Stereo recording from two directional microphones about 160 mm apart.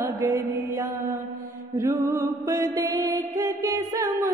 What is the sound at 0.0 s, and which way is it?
Music, 20° right (ahead or behind).